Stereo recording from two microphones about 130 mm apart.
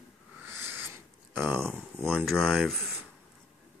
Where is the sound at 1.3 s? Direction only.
20° right (ahead or behind).